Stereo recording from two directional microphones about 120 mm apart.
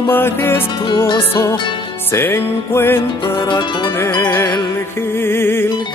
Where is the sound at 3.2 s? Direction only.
40° left (ahead or behind).